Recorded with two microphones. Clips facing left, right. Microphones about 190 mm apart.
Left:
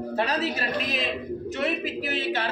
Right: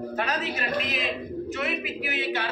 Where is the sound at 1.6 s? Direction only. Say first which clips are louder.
Left 3 dB; 35° left (ahead or behind).